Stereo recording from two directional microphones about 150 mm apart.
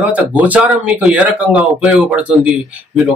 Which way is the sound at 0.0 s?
10° right (ahead or behind).